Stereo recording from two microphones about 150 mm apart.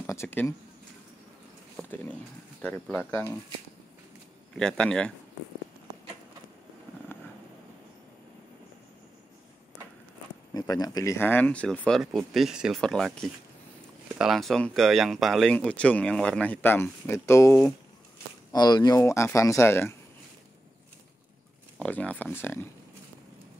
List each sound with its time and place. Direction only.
0.0 s speech: 15° left (ahead or behind)
1.8 s speech: 10° left (ahead or behind)
4.6 s speech: 5° left (ahead or behind)
7.1 s a sound: 15° left (ahead or behind)
10.5 s speech: 25° left (ahead or behind); by 12.0 s 5° left (ahead or behind)
12.4 s speech: 5° right (ahead or behind)
14.1 s speech: centre (ahead or behind); by 20.0 s 15° left (ahead or behind)
21.7 s speech: 10° left (ahead or behind)